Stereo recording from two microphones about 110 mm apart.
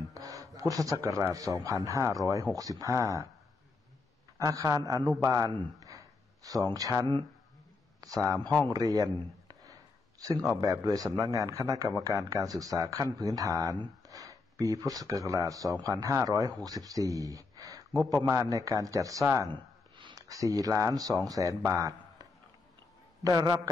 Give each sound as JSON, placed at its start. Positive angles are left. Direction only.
{"t": 0.1, "sound": "speech", "side_deg": -30}
{"t": 4.4, "sound": "speech", "side_deg": -30}
{"t": 5.8, "sound": "a sound", "side_deg": -30}
{"t": 8.0, "sound": "speech", "side_deg": -30}
{"t": 10.5, "sound": "speech", "side_deg": -30}
{"t": 20.0, "sound": "a sound", "side_deg": -45}
{"t": 20.2, "sound": "speech", "side_deg": -30}